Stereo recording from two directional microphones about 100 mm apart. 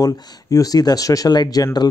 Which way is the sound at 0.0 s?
35° left (ahead or behind).